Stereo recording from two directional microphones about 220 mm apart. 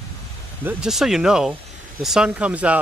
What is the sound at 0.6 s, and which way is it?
Speech, centre (ahead or behind).